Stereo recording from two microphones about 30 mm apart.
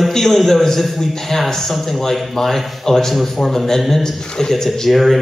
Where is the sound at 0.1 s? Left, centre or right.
Centre.